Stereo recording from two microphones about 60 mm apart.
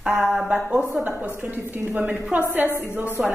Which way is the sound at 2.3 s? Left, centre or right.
Centre.